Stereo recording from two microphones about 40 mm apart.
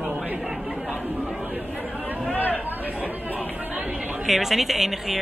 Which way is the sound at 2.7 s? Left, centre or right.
Right.